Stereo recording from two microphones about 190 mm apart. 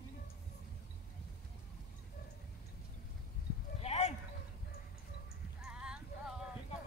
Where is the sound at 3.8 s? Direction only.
35° left (ahead or behind).